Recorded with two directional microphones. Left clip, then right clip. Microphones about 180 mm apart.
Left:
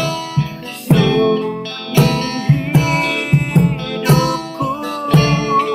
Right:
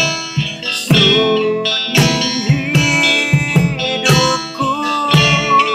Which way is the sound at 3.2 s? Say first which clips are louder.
Right 3 dB; 45° right (ahead or behind).